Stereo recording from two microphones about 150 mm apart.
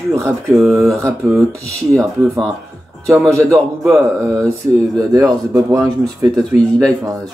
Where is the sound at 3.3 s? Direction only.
20° right (ahead or behind).